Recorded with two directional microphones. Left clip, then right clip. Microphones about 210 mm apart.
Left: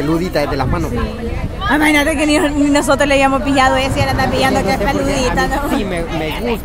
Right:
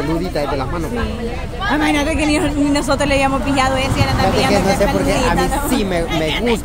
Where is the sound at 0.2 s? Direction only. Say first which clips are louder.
Left 3 dB; 50° left (ahead or behind).